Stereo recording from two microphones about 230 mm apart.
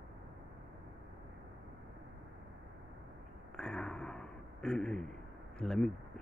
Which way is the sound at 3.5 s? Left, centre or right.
Centre.